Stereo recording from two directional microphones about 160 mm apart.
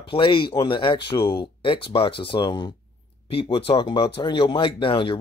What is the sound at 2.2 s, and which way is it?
Speech, 30° left (ahead or behind).